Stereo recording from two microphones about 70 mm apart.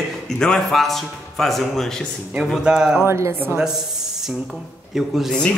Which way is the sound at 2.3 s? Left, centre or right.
Centre.